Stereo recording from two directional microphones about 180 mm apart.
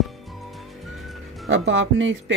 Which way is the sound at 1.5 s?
90° right.